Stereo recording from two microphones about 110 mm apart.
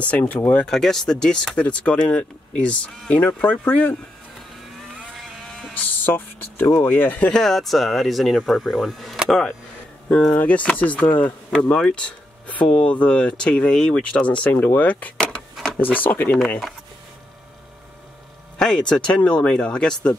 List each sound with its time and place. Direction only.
0.1 s speech: 15° left (ahead or behind)
4.9 s bleat: centre (ahead or behind)
6.0 s speech: 20° left (ahead or behind); by 9.5 s centre (ahead or behind)
10.3 s speech: 10° left (ahead or behind)
15.5 s a sound: centre (ahead or behind)
15.8 s speech: 15° left (ahead or behind)
16.3 s speech: centre (ahead or behind)
18.6 s speech: 5° left (ahead or behind)